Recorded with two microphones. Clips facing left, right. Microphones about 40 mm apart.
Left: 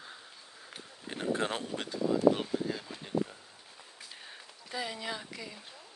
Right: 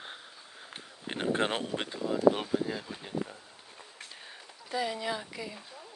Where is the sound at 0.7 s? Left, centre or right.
Right.